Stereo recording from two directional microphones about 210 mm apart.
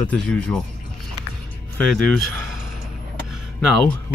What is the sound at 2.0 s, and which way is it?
Speech, 5° left (ahead or behind).